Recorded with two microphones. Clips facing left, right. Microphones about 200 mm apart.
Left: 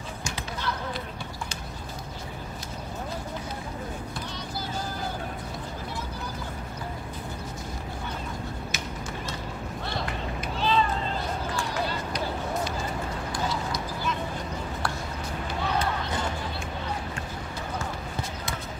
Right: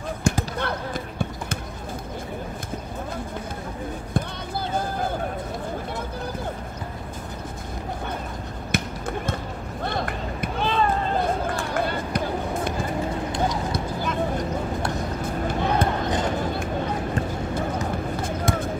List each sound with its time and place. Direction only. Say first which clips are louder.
0.2 s basketball bounce: right 10 dB; 55° right (ahead or behind)
4.1 s vehicle: right 7 dB; 55° right (ahead or behind)
8.7 s basketball bounce: right 7 dB; 55° right (ahead or behind)
9.8 s run: right 5 dB; 55° right (ahead or behind)
13.7 s a sound: right 4 dB; 50° right (ahead or behind)
15.2 s music: right 6 dB; 50° right (ahead or behind)
16.4 s a sound: right 8 dB; 55° right (ahead or behind)
18.2 s basketball bounce: right 10 dB; 50° right (ahead or behind)